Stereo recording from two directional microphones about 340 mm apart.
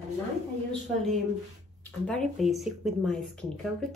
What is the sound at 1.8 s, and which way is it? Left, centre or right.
Speech, centre.